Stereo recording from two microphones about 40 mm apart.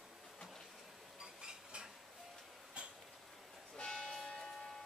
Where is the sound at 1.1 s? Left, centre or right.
Centre.